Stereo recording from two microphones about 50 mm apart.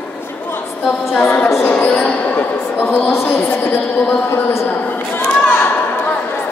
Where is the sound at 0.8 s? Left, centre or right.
Left.